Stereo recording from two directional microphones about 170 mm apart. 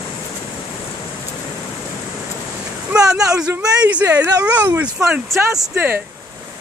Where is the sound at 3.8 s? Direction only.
10° right (ahead or behind).